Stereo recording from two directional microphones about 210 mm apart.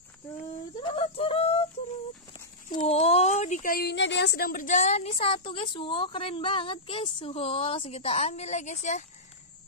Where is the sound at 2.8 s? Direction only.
30° left (ahead or behind).